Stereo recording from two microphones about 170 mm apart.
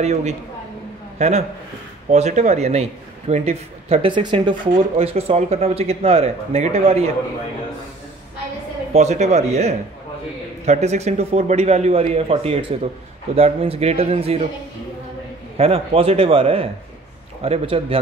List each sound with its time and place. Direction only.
0.0 s a man's voice: 40° right (ahead or behind)
8.9 s speech: 40° right (ahead or behind)
15.5 s speech: 35° right (ahead or behind)